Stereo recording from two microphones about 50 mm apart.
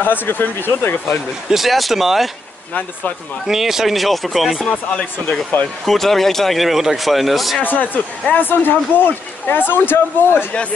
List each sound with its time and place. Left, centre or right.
0.0 s speech: left
1.5 s speech: centre
3.4 s speech: centre
4.6 s speech: left
5.9 s speech: centre
7.6 s speech: left